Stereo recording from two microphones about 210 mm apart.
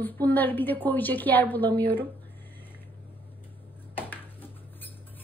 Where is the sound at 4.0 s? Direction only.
10° left (ahead or behind).